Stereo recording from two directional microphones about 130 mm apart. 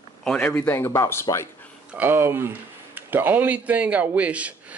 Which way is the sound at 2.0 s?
15° right (ahead or behind).